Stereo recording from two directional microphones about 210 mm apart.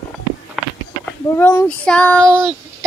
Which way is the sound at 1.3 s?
10° left (ahead or behind).